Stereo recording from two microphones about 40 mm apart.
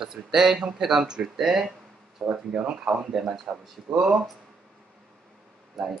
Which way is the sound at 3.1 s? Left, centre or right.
Centre.